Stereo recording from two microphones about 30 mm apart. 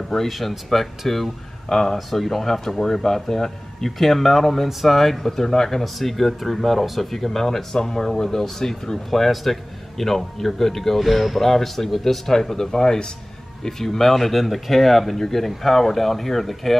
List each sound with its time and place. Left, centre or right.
0.3 s speech: centre
1.7 s speech: centre
2.0 s speech: centre
5.8 s speech: centre
12.3 s speech: centre